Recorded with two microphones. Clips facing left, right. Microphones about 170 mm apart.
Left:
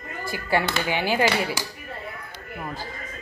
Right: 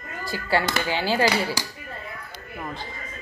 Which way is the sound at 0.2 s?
20° left (ahead or behind).